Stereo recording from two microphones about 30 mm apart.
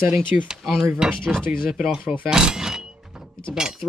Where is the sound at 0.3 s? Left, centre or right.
Right.